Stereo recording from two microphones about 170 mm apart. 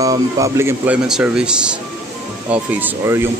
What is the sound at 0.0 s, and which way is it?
Speech, 20° right (ahead or behind).